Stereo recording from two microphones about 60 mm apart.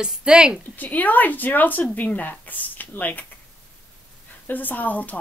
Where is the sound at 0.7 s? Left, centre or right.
Left.